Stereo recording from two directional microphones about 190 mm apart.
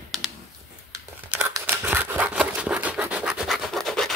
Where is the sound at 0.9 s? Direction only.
15° right (ahead or behind).